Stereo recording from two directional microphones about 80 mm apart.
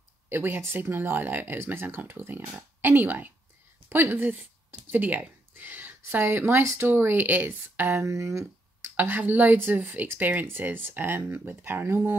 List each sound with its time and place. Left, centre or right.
0.3 s speech: right
8.0 s speech: right
8.9 s speech: right